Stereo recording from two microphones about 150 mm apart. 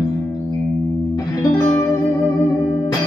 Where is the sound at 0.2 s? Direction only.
20° left (ahead or behind).